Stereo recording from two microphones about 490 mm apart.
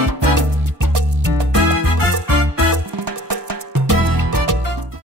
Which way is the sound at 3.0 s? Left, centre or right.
Right.